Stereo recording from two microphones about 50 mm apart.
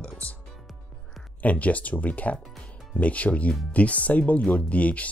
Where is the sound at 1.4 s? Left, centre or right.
Left.